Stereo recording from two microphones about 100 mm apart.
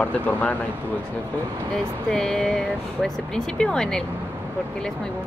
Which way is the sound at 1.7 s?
5° left (ahead or behind).